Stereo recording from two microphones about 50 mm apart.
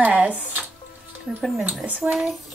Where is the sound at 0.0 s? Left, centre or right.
Right.